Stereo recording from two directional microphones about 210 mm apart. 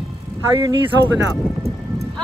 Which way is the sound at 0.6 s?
20° right (ahead or behind).